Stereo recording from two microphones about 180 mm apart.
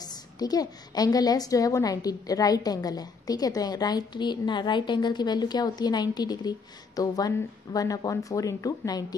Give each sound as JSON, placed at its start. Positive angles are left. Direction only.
{"t": 0.0, "sound": "a woman's voice", "side_deg": 20}